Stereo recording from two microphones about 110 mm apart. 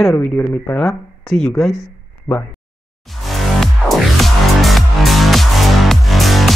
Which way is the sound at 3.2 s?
Centre (ahead or behind).